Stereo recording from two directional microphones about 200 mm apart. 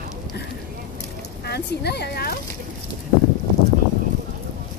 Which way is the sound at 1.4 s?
55° left (ahead or behind).